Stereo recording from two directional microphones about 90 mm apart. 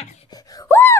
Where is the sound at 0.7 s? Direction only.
25° left (ahead or behind).